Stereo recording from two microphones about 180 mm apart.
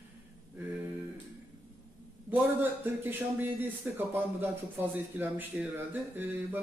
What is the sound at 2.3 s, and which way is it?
A man's voice, 10° right (ahead or behind).